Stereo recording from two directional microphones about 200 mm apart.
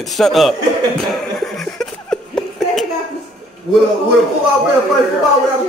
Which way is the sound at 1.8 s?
5° left (ahead or behind).